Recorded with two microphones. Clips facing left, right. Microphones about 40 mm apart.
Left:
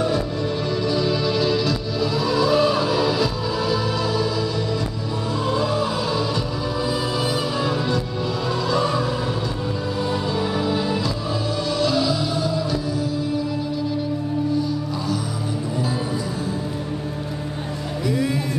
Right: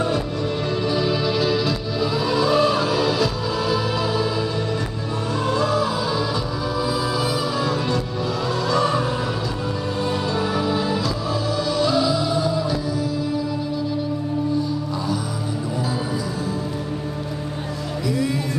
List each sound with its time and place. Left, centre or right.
0.8 s music: centre
5.7 s music: centre
8.7 s vehicle: right
10.3 s music: centre
18.0 s music: centre